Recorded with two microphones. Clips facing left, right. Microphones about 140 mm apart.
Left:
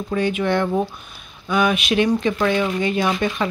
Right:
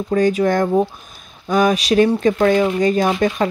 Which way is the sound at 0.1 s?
40° right (ahead or behind).